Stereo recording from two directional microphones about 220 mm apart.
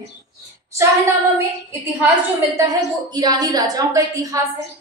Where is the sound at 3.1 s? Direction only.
15° right (ahead or behind).